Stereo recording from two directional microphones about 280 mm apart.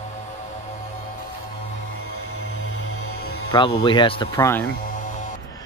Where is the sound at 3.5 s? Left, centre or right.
Centre.